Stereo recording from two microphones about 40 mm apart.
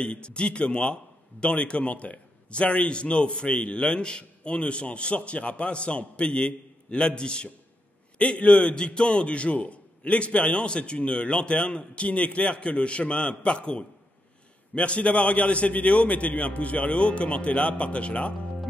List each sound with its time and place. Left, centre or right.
0.0 s a man's voice: left